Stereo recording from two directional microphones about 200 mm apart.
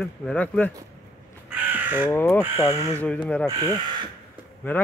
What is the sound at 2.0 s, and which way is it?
Speech, 10° left (ahead or behind).